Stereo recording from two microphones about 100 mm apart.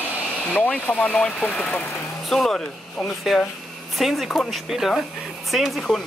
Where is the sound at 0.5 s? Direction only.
15° left (ahead or behind).